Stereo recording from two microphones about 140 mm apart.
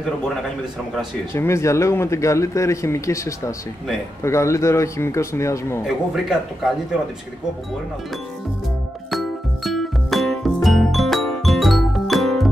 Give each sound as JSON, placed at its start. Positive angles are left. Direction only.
{"t": 1.3, "sound": "speech", "side_deg": 20}
{"t": 5.9, "sound": "speech", "side_deg": 0}
{"t": 9.1, "sound": "music", "side_deg": 0}